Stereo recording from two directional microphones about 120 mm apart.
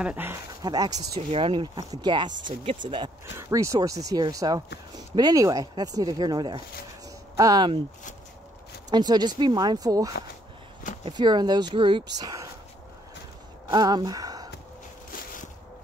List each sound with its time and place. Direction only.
0.0 s speech: 15° right (ahead or behind)
0.6 s speech: 30° right (ahead or behind)
1.1 s speech: 50° right (ahead or behind)
3.3 s speech: 25° right (ahead or behind)
8.9 s speech: 35° right (ahead or behind)
11.1 s speech: 35° right (ahead or behind)
13.7 s speech: 35° right (ahead or behind)